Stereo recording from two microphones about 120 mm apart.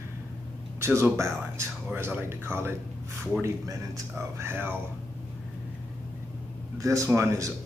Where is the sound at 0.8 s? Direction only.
20° right (ahead or behind).